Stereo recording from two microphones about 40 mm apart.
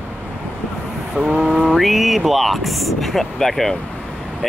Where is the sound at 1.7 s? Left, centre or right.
Centre.